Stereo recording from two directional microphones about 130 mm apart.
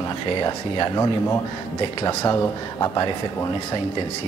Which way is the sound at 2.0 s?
25° left (ahead or behind).